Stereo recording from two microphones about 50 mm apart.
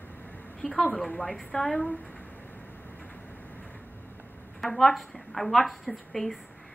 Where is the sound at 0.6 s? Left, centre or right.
Centre.